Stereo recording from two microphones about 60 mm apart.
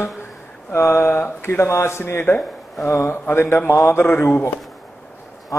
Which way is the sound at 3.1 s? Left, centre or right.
Left.